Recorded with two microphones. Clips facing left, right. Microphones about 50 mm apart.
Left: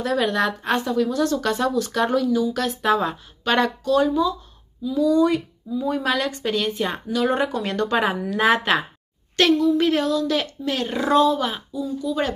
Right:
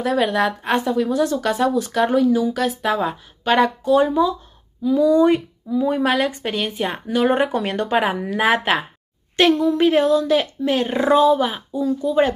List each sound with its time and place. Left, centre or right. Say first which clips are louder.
0.0 s a woman's voice: right 2 dB; centre
3.9 s speech: right 2 dB; right
5.7 s speech: right 6 dB; right
6.0 s a woman's voice: right 3 dB; centre
7.1 s speech: right 4 dB; right
8.3 s a woman's voice: left 1 dB; centre
9.4 s speech: right 2 dB; centre
11.1 s a woman's voice: right 1 dB; centre
11.7 s speech: right 6 dB; right